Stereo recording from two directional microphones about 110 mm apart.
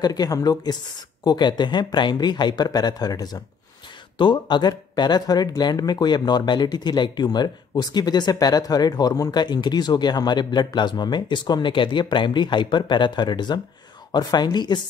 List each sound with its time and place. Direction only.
0.0 s speech: 35° left (ahead or behind)